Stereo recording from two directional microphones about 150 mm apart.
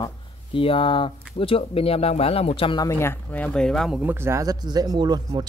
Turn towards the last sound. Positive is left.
turn(degrees=-30)  # may be behind; listen again after turning